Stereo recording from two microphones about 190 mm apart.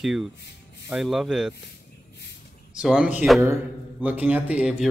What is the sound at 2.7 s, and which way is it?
Speech, 5° right (ahead or behind).